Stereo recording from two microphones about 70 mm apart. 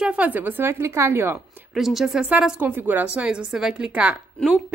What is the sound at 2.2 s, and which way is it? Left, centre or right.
Speech, centre.